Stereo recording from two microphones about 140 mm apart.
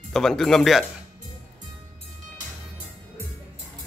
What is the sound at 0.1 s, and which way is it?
Speech, centre (ahead or behind).